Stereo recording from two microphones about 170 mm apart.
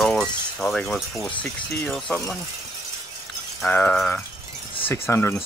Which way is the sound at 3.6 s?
5° left (ahead or behind).